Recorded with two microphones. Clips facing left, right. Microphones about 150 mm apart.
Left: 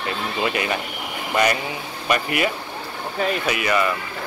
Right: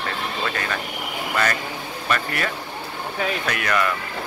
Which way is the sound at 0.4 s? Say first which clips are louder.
Left 6 dB; 15° left (ahead or behind).